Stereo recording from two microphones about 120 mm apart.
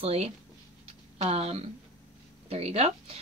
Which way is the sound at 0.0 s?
60° right (ahead or behind).